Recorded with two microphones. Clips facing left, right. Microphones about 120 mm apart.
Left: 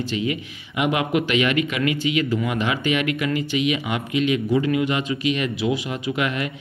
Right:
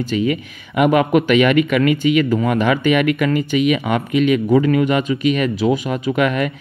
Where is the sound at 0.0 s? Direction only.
45° right (ahead or behind).